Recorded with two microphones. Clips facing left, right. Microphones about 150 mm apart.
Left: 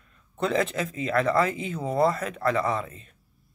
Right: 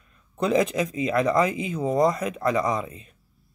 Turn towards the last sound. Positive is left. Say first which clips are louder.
# right 2 dB
turn(degrees=-15)  # may be behind; listen again after turning